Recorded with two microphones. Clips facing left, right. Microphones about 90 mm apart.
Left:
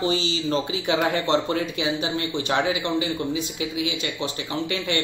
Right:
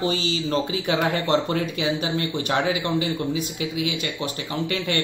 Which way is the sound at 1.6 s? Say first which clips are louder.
Right 1 dB; 40° right (ahead or behind).